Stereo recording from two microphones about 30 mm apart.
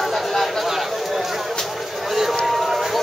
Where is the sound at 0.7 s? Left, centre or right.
Centre.